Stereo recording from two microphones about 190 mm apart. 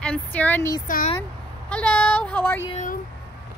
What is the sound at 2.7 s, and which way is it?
Speech, 40° left (ahead or behind).